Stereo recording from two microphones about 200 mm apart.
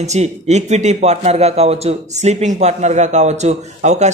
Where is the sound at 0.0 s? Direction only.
35° right (ahead or behind).